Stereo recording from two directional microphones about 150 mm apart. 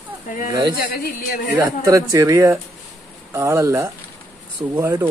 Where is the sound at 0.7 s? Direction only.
90° left.